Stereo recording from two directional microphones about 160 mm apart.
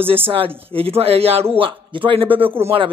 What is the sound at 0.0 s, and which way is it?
Speech, 35° right (ahead or behind).